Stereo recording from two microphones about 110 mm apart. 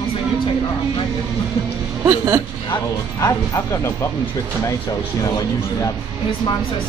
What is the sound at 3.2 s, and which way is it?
Speech, 25° left (ahead or behind).